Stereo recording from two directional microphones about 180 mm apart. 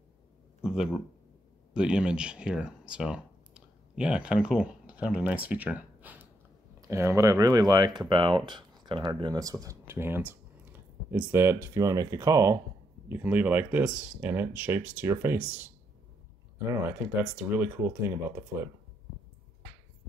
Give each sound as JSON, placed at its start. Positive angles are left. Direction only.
{"t": 0.6, "sound": "speech", "side_deg": -5}